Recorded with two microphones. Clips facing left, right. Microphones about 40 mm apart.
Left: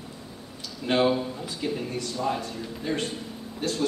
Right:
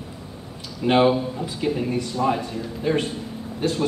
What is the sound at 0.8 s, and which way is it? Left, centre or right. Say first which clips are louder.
A man's voice: right 5 dB; right.